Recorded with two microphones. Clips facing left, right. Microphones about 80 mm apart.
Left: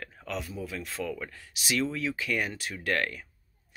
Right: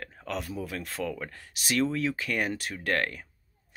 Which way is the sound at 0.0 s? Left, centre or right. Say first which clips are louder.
Right 1 dB; right.